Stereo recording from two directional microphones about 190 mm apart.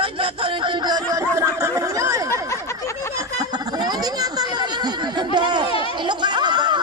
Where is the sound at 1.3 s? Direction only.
15° right (ahead or behind).